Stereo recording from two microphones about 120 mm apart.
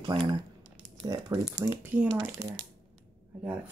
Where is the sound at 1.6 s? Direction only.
15° right (ahead or behind).